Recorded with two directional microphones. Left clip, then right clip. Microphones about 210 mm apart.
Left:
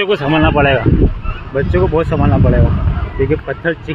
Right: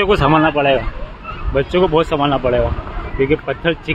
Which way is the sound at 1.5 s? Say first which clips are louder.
Even; 5° right (ahead or behind).